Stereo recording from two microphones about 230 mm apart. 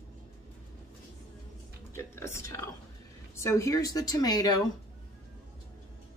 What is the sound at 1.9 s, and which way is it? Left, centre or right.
Speech, centre.